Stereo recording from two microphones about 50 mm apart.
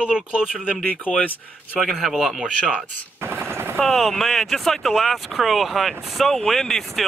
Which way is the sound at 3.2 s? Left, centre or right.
Right.